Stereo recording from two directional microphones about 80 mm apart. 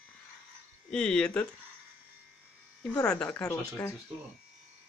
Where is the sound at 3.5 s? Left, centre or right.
Left.